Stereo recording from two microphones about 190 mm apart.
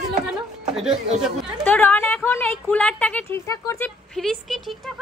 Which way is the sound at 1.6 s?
10° left (ahead or behind).